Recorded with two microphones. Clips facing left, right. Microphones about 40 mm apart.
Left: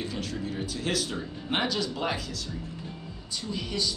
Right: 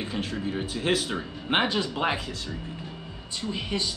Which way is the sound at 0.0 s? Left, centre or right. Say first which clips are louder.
Right 3 dB; right.